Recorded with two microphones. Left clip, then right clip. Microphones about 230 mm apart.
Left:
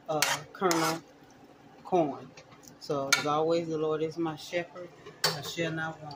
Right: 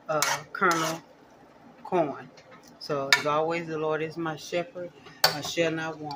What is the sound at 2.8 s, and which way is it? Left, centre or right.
Speech, right.